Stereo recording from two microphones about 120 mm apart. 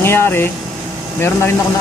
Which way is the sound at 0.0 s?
20° left (ahead or behind).